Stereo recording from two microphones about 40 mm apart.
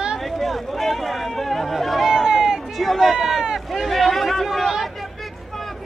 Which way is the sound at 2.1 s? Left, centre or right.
Centre.